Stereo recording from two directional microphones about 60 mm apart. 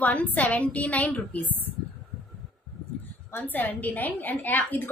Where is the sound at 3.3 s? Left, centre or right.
Left.